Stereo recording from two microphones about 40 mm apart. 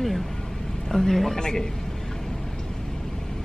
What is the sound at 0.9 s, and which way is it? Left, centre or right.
Speech, centre.